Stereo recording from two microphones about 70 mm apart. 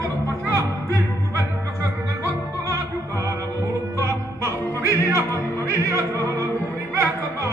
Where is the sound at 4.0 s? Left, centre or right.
Right.